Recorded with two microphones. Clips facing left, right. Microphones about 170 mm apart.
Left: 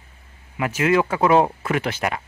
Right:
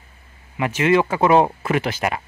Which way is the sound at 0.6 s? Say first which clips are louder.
Right 2 dB; centre (ahead or behind).